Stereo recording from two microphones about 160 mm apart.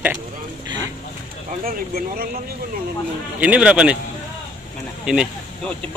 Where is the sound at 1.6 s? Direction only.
65° right (ahead or behind).